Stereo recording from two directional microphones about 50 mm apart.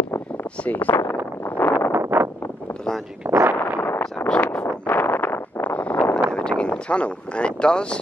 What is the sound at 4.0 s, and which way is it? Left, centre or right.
Vehicle, left.